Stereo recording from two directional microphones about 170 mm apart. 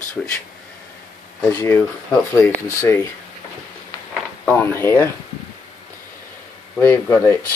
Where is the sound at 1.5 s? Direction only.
15° left (ahead or behind).